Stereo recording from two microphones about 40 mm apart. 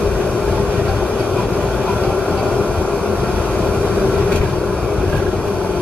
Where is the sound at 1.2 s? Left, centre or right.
Left.